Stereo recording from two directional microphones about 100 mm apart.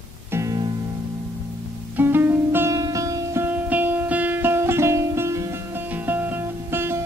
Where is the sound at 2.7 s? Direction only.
35° right (ahead or behind).